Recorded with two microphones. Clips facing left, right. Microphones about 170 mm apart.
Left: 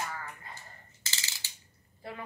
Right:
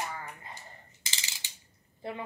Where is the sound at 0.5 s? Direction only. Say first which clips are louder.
Right 2 dB; 15° right (ahead or behind).